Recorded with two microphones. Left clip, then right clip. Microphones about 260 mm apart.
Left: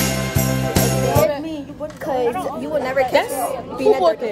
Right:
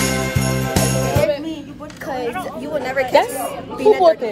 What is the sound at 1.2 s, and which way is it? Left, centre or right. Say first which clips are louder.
Music: even; left.